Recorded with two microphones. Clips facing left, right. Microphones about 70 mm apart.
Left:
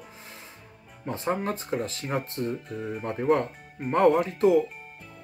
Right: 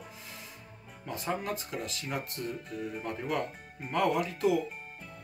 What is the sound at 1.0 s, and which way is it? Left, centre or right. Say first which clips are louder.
Speech: left 6 dB; left.